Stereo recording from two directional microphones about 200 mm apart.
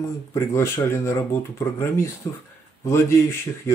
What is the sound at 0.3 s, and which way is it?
Speech, 15° left (ahead or behind).